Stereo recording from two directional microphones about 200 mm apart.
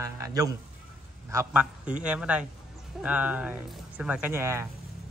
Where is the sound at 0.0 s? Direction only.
15° right (ahead or behind).